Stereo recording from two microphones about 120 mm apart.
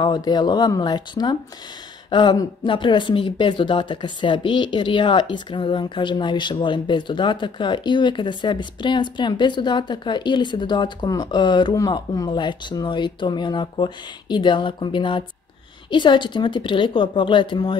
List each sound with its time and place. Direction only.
0.0 s a woman's voice: 35° left (ahead or behind)